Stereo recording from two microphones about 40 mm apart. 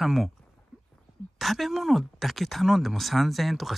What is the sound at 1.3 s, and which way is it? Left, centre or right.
Speech, centre.